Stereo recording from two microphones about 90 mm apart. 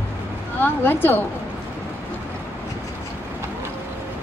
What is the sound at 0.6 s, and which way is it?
Speech, 20° left (ahead or behind).